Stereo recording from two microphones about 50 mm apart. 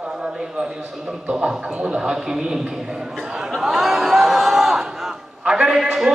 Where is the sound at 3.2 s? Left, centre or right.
Centre.